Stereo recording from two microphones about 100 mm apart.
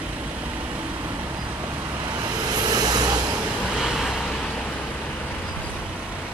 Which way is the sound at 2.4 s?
40° right (ahead or behind).